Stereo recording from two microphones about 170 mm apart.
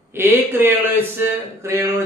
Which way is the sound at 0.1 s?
15° right (ahead or behind).